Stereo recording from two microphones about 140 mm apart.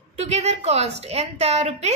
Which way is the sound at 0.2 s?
50° right (ahead or behind).